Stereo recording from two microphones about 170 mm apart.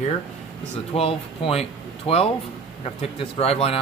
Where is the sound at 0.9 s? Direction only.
35° left (ahead or behind).